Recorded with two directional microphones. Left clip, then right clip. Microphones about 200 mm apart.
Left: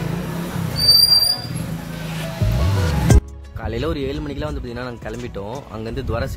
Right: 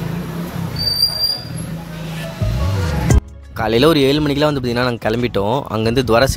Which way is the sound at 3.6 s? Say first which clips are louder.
Right 12 dB; 50° right (ahead or behind).